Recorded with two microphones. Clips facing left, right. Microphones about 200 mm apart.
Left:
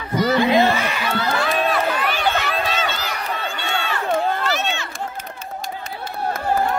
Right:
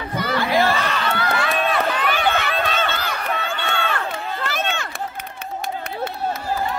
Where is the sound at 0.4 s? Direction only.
20° left (ahead or behind).